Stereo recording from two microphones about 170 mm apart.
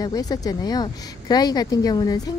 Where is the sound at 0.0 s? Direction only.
20° left (ahead or behind).